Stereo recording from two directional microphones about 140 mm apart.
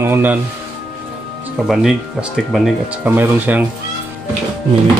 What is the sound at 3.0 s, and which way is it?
Speech, 15° right (ahead or behind).